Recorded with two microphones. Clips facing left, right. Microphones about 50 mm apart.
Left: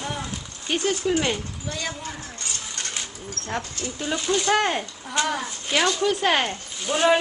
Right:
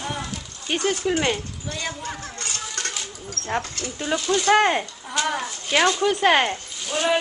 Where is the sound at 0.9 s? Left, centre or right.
Right.